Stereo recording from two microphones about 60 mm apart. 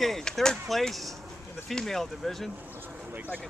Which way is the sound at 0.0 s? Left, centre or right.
Centre.